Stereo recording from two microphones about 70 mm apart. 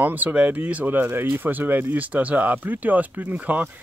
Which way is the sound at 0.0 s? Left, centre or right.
Right.